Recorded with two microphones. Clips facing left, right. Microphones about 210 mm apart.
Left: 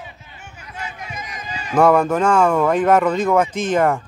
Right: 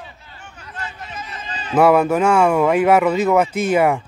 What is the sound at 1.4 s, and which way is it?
Run, 30° right (ahead or behind).